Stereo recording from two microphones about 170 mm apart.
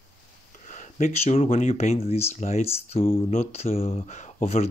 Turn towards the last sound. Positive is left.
turn(degrees=40)  # may be behind; listen again after turning